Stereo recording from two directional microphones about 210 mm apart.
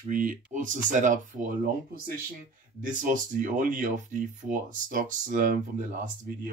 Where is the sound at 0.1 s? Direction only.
40° right (ahead or behind).